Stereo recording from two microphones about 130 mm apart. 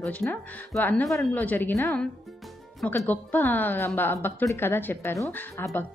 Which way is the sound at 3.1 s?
15° left (ahead or behind).